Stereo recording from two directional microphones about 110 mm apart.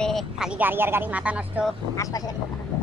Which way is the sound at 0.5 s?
15° right (ahead or behind).